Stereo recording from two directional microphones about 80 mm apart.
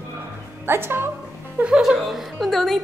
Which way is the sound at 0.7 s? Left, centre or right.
Right.